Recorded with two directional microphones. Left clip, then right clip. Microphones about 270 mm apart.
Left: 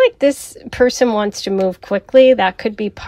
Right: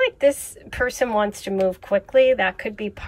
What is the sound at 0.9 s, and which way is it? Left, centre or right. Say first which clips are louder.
Speech: left 5 dB; left.